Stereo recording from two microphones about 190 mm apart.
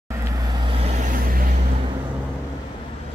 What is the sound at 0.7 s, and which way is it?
Vehicle, 35° right (ahead or behind).